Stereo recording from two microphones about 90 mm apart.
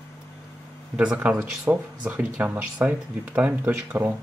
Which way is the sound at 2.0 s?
10° right (ahead or behind).